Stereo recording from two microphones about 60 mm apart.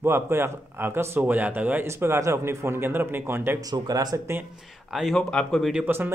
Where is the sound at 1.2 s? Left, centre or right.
Right.